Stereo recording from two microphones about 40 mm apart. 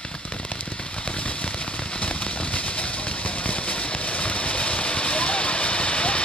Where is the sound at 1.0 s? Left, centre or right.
Left.